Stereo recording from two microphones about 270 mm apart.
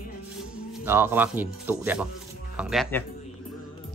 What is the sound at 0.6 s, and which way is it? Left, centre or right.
Speech, centre.